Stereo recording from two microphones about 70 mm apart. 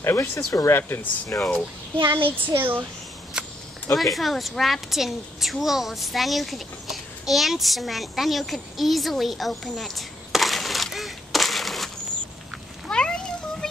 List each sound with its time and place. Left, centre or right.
0.0 s speech: left
0.3 s speech: left
0.7 s speech: left
2.2 s a child's voice: right
3.4 s a sound: centre
3.9 s a woman's voice: centre
12.8 s a sound: centre